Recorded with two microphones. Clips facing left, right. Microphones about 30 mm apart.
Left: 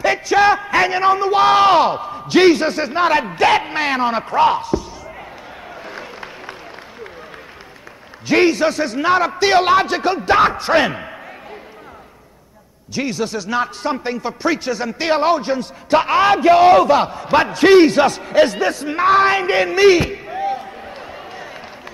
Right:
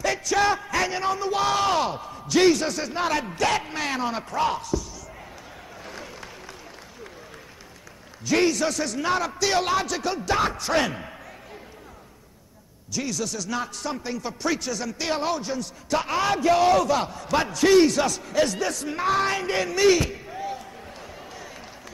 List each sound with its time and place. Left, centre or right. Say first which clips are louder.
0.0 s a man's voice: left 8 dB; left
5.9 s a sound: left 6 dB; left
8.3 s a man's voice: left 7 dB; left
12.9 s a man's voice: left 7 dB; left